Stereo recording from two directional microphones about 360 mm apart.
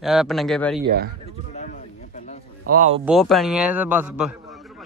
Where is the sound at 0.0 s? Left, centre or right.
Centre.